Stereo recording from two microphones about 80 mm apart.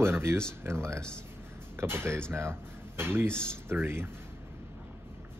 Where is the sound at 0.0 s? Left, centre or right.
Right.